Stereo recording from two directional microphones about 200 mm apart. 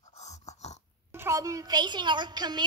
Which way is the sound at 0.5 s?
35° left (ahead or behind).